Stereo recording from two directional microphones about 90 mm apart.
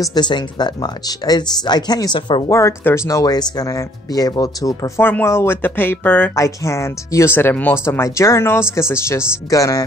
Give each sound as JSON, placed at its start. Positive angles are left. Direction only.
{"t": 0.0, "sound": "speech", "side_deg": 50}
{"t": 2.1, "sound": "speech", "side_deg": 60}
{"t": 2.5, "sound": "speech", "side_deg": 30}
{"t": 5.0, "sound": "speech", "side_deg": 25}
{"t": 6.3, "sound": "speech", "side_deg": 35}
{"t": 7.3, "sound": "speech", "side_deg": 20}